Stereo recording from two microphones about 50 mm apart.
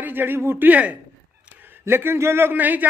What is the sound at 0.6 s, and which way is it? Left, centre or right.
Speech, right.